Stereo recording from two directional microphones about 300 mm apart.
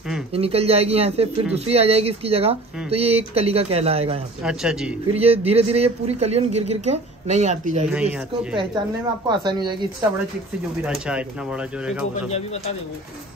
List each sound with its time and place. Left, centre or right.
0.3 s a man's voice: centre
4.4 s speech: centre
5.1 s a man's voice: centre
7.9 s speech: centre
9.3 s speech: centre
10.8 s speech: centre